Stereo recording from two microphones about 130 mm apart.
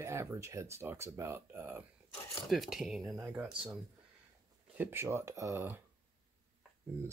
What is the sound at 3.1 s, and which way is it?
Speech, 20° right (ahead or behind).